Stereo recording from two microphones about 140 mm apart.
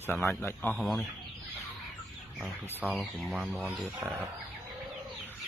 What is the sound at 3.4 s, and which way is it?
Speech, 10° right (ahead or behind).